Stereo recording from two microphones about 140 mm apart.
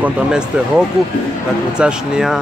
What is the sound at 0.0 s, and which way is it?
Speech, 5° right (ahead or behind).